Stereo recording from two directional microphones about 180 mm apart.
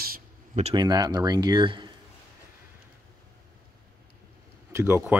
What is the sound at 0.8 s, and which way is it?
Speech, 25° right (ahead or behind).